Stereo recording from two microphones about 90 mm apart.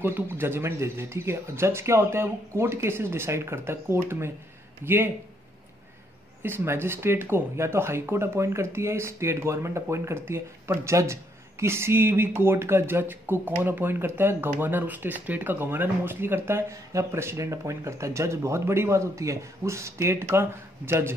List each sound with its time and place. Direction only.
0.0 s speech: 25° right (ahead or behind)
6.4 s speech: 25° right (ahead or behind)